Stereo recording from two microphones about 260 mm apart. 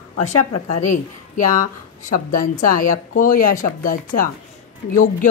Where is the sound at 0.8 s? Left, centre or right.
Left.